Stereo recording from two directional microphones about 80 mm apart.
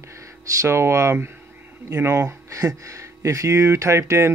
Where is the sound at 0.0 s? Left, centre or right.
Right.